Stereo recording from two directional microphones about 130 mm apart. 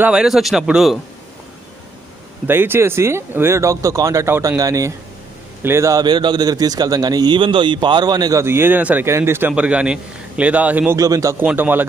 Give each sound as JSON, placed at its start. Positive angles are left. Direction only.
{"t": 0.0, "sound": "a man's voice", "side_deg": -5}
{"t": 2.4, "sound": "a man's voice", "side_deg": -15}
{"t": 11.0, "sound": "a man's voice", "side_deg": -25}
{"t": 11.4, "sound": "a man's voice", "side_deg": -15}